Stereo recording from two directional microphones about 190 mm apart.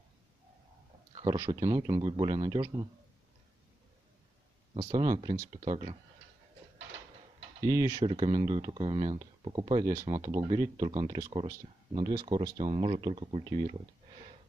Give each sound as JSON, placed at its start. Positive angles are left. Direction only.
{"t": 1.1, "sound": "a sound", "side_deg": -25}
{"t": 1.5, "sound": "speech", "side_deg": -20}
{"t": 4.7, "sound": "speech", "side_deg": -15}
{"t": 5.6, "sound": "speech", "side_deg": -30}
{"t": 7.6, "sound": "speech", "side_deg": -15}
{"t": 8.0, "sound": "speech", "side_deg": -30}
{"t": 10.0, "sound": "speech", "side_deg": -40}
{"t": 10.3, "sound": "speech", "side_deg": -20}